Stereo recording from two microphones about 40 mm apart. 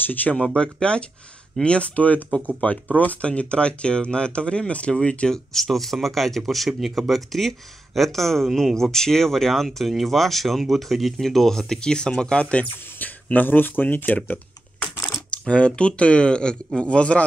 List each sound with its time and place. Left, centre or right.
0.0 s speech: left
0.6 s speech: left
5.5 s speech: centre; by 12.6 s left
13.0 s speech: left
15.3 s speech: left